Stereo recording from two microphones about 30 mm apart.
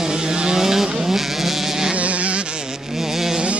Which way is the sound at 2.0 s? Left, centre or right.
Right.